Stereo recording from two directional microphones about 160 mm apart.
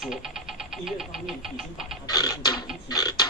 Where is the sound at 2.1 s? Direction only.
25° left (ahead or behind).